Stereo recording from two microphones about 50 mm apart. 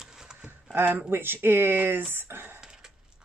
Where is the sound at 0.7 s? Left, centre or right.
Right.